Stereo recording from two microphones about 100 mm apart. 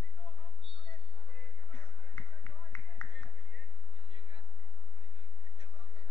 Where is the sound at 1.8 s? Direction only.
20° left (ahead or behind).